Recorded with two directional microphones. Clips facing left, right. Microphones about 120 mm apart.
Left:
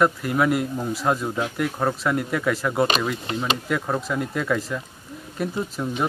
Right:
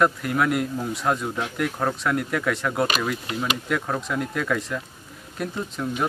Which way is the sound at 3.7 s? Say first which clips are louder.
Left 1 dB; centre (ahead or behind).